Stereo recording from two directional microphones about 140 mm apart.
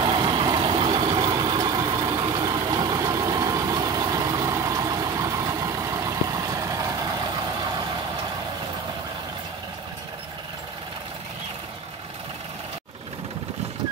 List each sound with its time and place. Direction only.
0.0 s vehicle: 35° right (ahead or behind)